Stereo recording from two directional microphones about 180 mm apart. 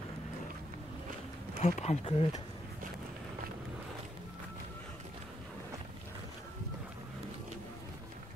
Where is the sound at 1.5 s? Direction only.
40° left (ahead or behind).